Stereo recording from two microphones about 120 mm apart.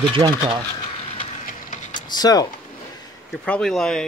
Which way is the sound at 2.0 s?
35° left (ahead or behind).